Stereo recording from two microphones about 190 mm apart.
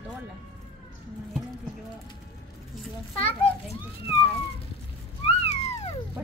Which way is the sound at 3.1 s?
30° left (ahead or behind).